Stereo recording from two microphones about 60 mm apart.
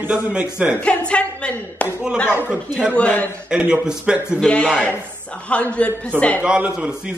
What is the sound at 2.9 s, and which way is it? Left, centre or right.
Speech, left.